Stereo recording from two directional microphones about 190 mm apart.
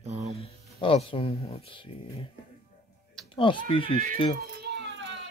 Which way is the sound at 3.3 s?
25° left (ahead or behind).